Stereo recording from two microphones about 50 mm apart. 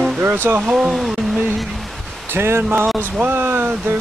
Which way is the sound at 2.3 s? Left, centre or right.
Right.